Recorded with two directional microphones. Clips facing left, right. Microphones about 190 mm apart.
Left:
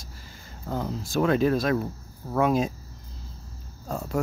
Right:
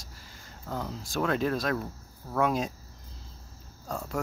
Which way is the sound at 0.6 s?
20° left (ahead or behind).